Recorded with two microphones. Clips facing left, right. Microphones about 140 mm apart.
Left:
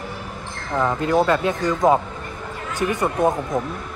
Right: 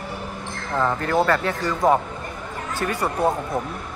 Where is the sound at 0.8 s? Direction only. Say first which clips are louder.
Left 2 dB; 15° left (ahead or behind).